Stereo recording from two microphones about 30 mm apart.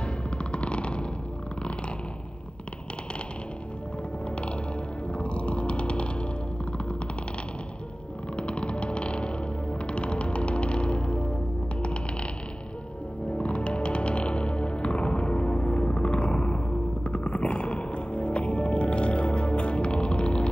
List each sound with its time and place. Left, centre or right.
0.0 s music: left
5.1 s music: left
8.4 s music: left
13.3 s music: left